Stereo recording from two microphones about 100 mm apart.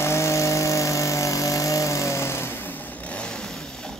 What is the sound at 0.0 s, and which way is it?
Power tool, 30° left (ahead or behind).